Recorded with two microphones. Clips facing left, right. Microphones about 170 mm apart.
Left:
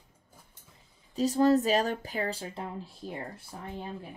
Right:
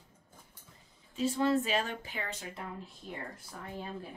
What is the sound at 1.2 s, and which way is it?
Speech, 40° left (ahead or behind).